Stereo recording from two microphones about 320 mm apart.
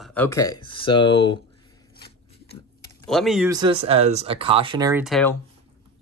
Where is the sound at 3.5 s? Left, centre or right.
Centre.